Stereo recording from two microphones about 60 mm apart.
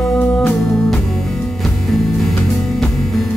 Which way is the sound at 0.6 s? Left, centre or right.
Centre.